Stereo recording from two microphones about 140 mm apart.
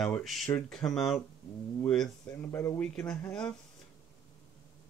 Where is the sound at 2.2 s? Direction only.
15° left (ahead or behind).